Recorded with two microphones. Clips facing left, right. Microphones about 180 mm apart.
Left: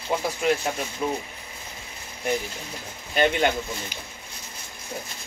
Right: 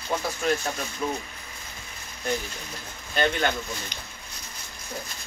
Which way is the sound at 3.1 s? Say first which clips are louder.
Left 3 dB; 15° left (ahead or behind).